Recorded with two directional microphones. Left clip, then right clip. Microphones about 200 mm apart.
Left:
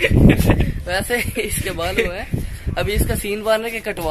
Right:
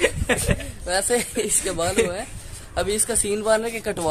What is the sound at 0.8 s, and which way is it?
A man's voice, 5° right (ahead or behind).